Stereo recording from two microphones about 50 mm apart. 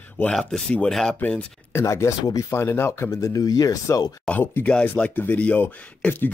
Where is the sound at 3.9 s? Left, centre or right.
Left.